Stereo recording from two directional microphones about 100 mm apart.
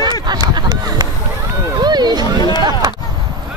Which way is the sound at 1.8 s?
45° right (ahead or behind).